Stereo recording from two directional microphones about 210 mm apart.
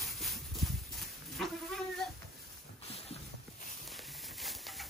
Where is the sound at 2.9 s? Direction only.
30° left (ahead or behind).